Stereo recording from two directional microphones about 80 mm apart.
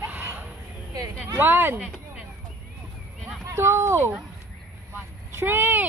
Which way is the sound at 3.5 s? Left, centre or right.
Right.